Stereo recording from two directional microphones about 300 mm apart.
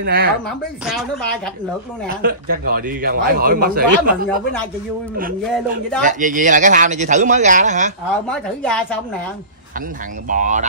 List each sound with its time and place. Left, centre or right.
0.0 s a man's voice: right
0.5 s speech: centre
2.0 s a man's voice: right
6.0 s a man's voice: right
8.3 s speech: centre
10.2 s a man's voice: right